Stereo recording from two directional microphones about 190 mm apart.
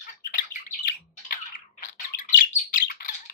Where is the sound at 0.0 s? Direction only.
45° left (ahead or behind).